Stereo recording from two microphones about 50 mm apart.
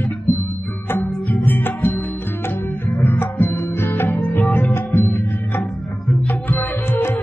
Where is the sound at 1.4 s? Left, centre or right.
Left.